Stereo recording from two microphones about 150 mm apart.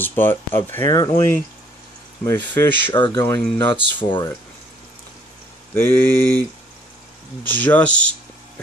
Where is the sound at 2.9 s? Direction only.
30° left (ahead or behind).